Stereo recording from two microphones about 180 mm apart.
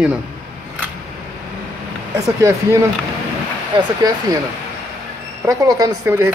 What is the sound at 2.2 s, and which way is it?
Speech, 20° right (ahead or behind).